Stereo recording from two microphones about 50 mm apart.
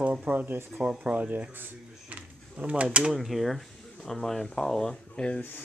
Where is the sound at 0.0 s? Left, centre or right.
Right.